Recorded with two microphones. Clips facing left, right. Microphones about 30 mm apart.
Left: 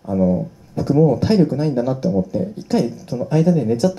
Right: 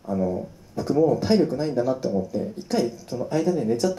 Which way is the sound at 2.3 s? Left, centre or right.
Centre.